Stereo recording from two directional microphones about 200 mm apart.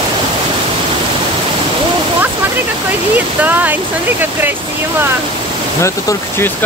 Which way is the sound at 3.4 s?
10° right (ahead or behind).